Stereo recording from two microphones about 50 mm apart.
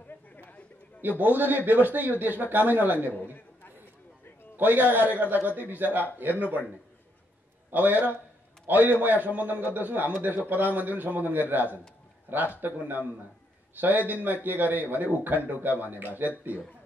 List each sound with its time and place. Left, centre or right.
1.0 s a man's voice: right
4.6 s a man's voice: right
7.7 s a man's voice: right